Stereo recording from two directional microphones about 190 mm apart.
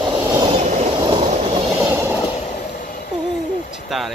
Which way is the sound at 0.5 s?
35° right (ahead or behind).